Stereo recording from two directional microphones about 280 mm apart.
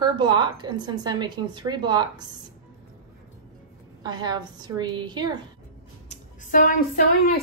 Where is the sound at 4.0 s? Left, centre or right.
Centre.